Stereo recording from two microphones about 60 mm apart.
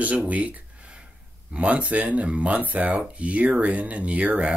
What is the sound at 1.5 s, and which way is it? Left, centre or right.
Speech, right.